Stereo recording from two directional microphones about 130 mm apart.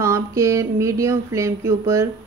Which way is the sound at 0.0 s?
20° right (ahead or behind).